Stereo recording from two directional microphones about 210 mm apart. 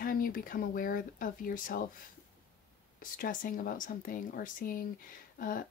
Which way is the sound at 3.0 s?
40° left (ahead or behind).